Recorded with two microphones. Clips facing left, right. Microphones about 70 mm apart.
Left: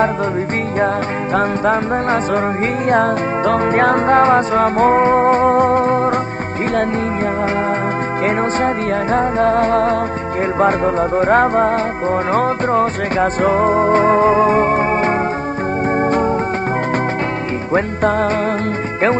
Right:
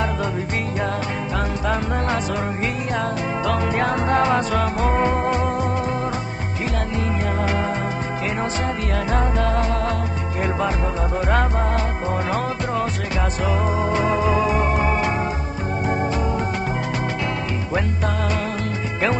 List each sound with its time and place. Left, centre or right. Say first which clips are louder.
1.3 s music: left 9 dB; left
8.6 s music: left 7 dB; left
16.0 s organ: left 8 dB; left